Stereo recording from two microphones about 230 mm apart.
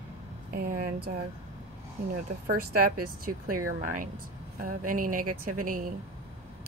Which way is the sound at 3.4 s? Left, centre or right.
Right.